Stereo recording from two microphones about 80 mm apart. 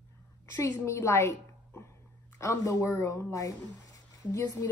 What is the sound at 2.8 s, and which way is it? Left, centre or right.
Speech, left.